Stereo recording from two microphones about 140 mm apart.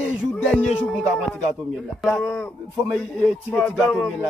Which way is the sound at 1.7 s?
Centre (ahead or behind).